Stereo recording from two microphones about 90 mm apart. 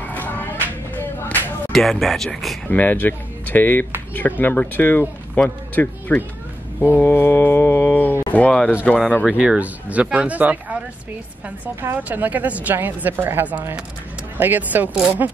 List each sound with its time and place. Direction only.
0.0 s music: 20° left (ahead or behind)
1.7 s speech: centre (ahead or behind)
2.7 s speech: 20° left (ahead or behind)
9.4 s a woman's voice: 15° right (ahead or behind)